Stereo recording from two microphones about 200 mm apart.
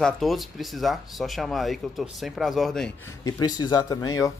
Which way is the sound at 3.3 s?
20° left (ahead or behind).